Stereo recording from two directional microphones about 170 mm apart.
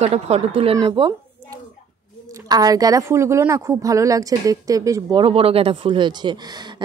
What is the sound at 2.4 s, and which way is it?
Speech, 20° right (ahead or behind).